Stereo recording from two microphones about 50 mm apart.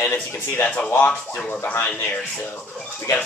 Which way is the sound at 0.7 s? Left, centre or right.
Left.